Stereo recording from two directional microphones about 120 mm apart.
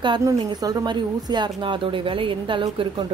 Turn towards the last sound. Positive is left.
turn(degrees=-45)  # may be behind; listen again after turning